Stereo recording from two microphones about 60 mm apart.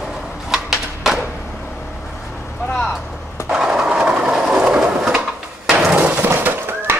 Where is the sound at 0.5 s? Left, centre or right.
Centre.